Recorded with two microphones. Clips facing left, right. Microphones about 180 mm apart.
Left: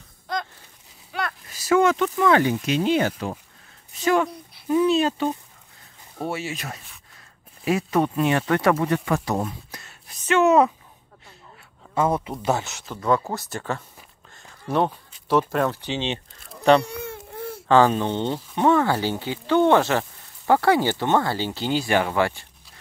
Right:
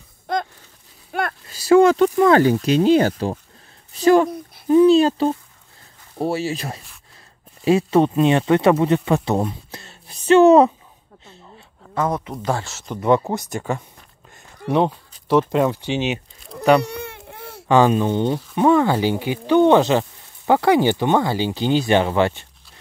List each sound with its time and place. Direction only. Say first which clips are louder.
0.3 s a sound: right 6 dB; 55° right (ahead or behind)
1.5 s speech: right 6 dB; 30° right (ahead or behind)
9.7 s a sound: right 4 dB; 30° right (ahead or behind)
11.9 s speech: even; 10° left (ahead or behind)
12.8 s speech: right 6 dB; 20° right (ahead or behind)
15.2 s speech: right 4 dB; 15° right (ahead or behind)
16.8 s baby cry: right 2 dB; 70° right (ahead or behind)
17.6 s speech: right 2 dB; 15° right (ahead or behind)